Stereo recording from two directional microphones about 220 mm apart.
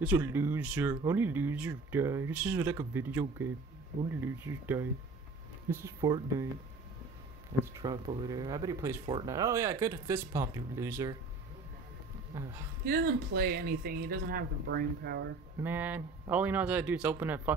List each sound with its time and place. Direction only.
0.0 s speech: 10° right (ahead or behind)
7.6 s speech: 15° right (ahead or behind)
12.3 s speech: 10° right (ahead or behind)
12.8 s speech: 40° right (ahead or behind)
15.6 s speech: 10° right (ahead or behind)